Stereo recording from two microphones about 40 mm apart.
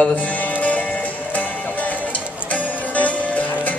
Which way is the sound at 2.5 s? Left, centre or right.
Left.